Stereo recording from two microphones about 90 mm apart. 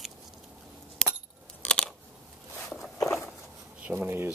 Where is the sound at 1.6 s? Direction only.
10° left (ahead or behind).